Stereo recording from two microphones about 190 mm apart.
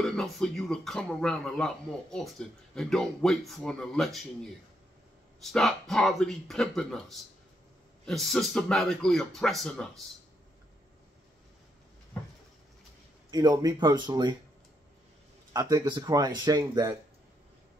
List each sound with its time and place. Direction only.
0.0 s speech: 5° left (ahead or behind)
13.3 s speech: 20° right (ahead or behind)
15.5 s speech: 20° right (ahead or behind)